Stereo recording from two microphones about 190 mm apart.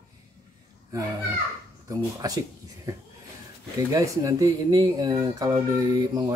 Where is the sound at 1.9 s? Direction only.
20° right (ahead or behind).